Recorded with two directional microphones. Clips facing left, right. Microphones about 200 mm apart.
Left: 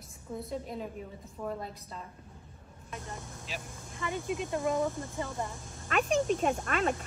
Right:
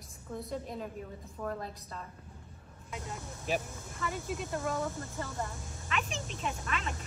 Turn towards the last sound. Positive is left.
turn(degrees=50)  # may be behind; listen again after turning